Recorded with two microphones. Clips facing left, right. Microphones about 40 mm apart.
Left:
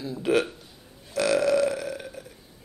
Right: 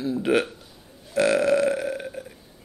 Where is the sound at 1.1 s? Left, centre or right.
Right.